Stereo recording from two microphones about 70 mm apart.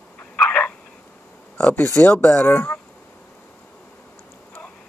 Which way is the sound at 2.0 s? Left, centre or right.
Left.